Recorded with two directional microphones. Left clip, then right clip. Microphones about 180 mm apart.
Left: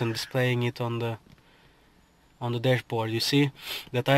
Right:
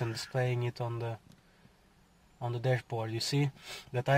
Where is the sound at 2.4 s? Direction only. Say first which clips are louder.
Left 7 dB; 30° left (ahead or behind).